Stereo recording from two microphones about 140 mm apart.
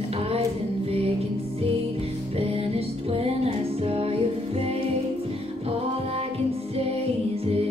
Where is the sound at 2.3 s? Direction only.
45° right (ahead or behind).